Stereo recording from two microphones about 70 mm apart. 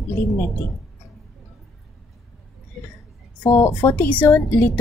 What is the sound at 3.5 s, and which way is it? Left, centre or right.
Speech, left.